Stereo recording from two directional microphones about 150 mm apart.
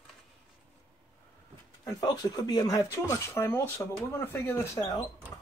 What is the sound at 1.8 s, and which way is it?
Speech, 25° left (ahead or behind).